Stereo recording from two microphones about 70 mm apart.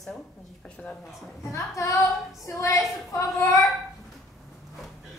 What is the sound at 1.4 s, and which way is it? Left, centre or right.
Speech, left.